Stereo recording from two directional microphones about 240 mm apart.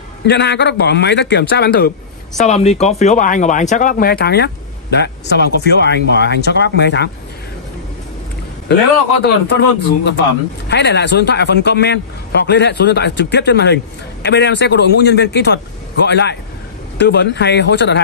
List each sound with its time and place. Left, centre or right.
0.3 s a man's voice: left
9.2 s a man's voice: left